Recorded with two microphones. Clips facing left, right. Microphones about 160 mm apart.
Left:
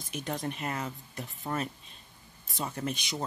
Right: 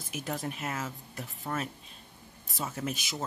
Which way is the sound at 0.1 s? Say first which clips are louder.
Left 1 dB; 5° right (ahead or behind).